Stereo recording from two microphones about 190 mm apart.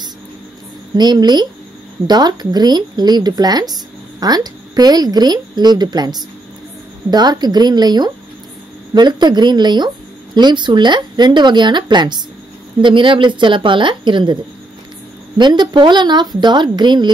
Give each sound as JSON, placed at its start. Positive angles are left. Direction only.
{"t": 0.9, "sound": "a woman's voice", "side_deg": -20}